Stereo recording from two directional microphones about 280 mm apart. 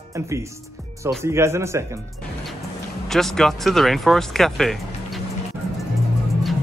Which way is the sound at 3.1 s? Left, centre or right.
Centre.